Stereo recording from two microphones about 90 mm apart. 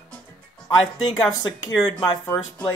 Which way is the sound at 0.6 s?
50° left (ahead or behind).